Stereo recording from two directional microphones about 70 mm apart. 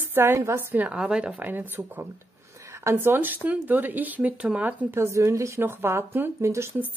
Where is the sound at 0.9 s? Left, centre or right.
Centre.